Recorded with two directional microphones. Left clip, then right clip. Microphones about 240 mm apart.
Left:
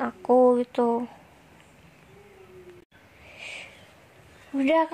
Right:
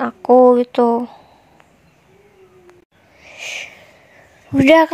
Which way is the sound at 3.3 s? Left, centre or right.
Right.